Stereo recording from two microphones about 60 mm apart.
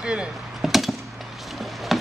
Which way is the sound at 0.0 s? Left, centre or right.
Centre.